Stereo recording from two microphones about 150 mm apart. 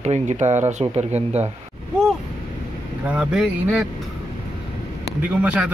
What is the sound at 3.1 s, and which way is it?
Speech, 10° right (ahead or behind).